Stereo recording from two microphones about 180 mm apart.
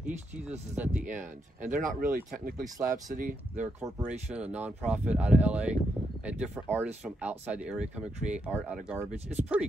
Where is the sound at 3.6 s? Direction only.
15° right (ahead or behind).